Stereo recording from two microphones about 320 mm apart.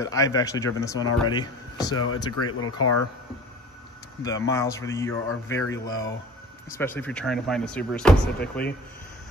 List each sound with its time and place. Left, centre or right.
0.0 s speech: centre
2.3 s speech: left
4.2 s speech: centre